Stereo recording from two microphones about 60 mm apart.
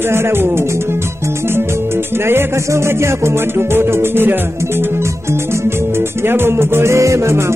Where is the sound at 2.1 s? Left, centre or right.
Right.